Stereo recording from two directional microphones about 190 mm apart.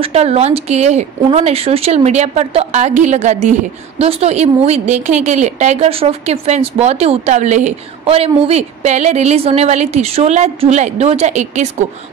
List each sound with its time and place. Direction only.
0.0 s a woman's voice: 35° right (ahead or behind)